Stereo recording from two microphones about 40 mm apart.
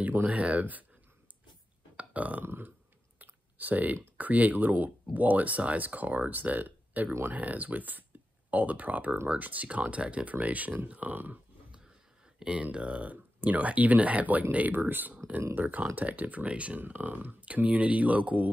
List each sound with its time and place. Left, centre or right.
0.0 s a sound: right
0.3 s speech: right
2.0 s burping: right
2.4 s speech: right
3.2 s typing: right
4.2 s speech: right
12.4 s speech: centre
12.7 s speech: right
14.7 s speech: right
16.7 s speech: right